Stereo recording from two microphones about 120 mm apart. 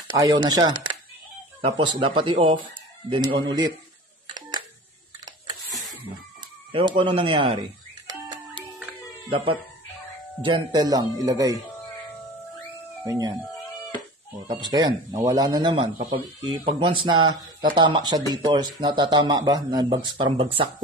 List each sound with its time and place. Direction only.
0.2 s a man's voice: 35° right (ahead or behind)
4.3 s telephone: 35° right (ahead or behind)
6.7 s speech: 40° right (ahead or behind)
9.3 s a man's voice: 50° right (ahead or behind); by 11.5 s 30° right (ahead or behind)
13.0 s speech: 30° right (ahead or behind)
14.5 s a man's voice: 35° right (ahead or behind)